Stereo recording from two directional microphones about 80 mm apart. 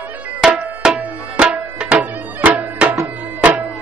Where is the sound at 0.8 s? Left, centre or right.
Centre.